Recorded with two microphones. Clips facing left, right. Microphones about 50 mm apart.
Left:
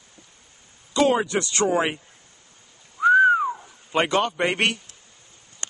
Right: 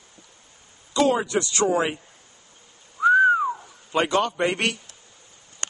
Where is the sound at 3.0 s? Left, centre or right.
Centre.